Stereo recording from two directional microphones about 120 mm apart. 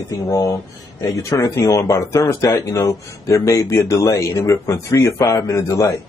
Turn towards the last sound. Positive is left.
turn(degrees=25)  # may be behind; listen again after turning